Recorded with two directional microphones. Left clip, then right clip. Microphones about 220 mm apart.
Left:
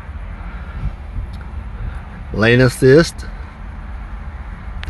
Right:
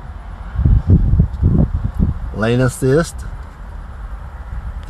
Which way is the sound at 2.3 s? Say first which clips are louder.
Left 4 dB; 15° left (ahead or behind).